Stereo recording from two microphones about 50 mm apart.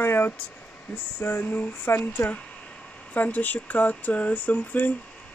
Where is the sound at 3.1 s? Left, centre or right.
Left.